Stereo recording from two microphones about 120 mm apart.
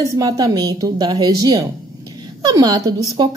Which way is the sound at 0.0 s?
30° right (ahead or behind).